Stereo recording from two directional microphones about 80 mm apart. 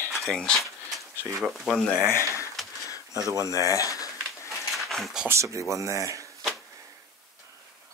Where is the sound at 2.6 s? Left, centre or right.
Centre.